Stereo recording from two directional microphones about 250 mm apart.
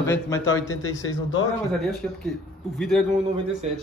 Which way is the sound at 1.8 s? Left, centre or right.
Centre.